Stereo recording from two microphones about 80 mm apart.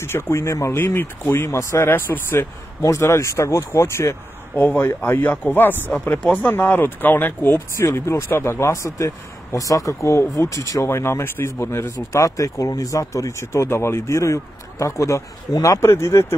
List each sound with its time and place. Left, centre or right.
0.0 s speech: left
0.7 s speech: left
2.8 s speech: left